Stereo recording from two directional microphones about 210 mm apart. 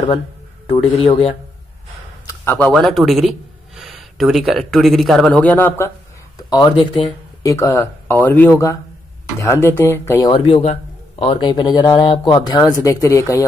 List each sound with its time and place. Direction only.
0.9 s a man's voice: 25° left (ahead or behind)
2.4 s a man's voice: 5° left (ahead or behind)
6.3 s a man's voice: 20° left (ahead or behind)
7.4 s speech: 15° left (ahead or behind)
10.4 s a man's voice: 30° left (ahead or behind); by 13.4 s 15° left (ahead or behind)